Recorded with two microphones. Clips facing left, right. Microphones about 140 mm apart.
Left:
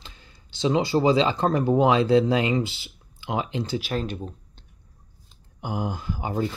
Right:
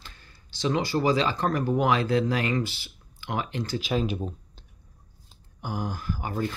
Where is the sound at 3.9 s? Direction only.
5° right (ahead or behind).